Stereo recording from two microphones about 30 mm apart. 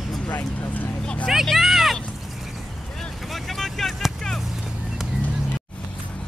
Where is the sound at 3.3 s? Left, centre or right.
Centre.